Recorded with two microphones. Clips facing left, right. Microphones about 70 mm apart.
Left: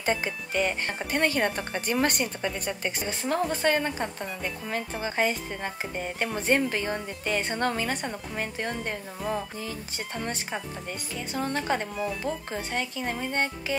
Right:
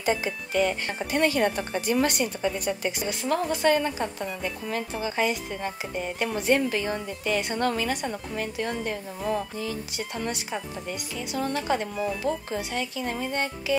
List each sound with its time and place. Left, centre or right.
0.0 s speech: left